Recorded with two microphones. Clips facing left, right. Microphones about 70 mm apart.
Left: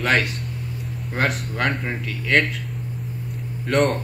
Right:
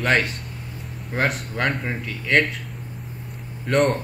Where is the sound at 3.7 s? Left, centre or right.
Centre.